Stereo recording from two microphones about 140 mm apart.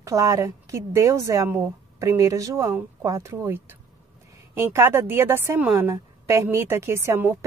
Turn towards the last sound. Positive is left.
turn(degrees=-20)  # may be behind; listen again after turning